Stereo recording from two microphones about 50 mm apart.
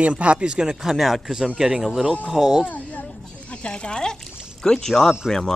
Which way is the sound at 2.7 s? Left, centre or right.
Left.